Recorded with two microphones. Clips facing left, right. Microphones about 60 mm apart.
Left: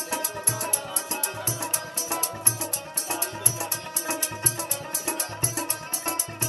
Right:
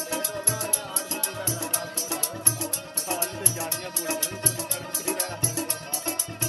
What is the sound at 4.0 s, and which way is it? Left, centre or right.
Music, left.